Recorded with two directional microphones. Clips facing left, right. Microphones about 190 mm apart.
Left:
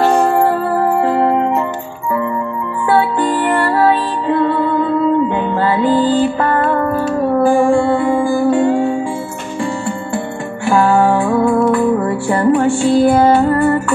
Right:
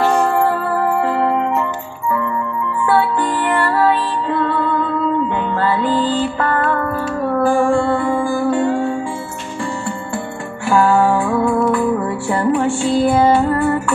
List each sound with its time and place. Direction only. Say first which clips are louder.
0.1 s music: left 3 dB; 20° left (ahead or behind)
1.0 s music: left 3 dB; 5° left (ahead or behind)
2.9 s music: left 3 dB; 15° left (ahead or behind)
3.3 s music: left 3 dB; 5° left (ahead or behind)
10.1 s music: left 4 dB; centre (ahead or behind)